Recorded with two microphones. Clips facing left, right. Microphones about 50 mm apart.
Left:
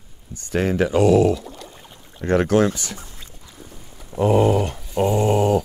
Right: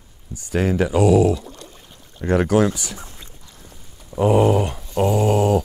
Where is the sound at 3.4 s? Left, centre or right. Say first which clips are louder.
Left 3 dB; centre.